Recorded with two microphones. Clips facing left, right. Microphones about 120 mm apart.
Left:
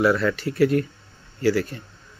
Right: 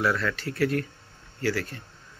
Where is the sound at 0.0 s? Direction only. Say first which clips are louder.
Left 6 dB; 10° left (ahead or behind).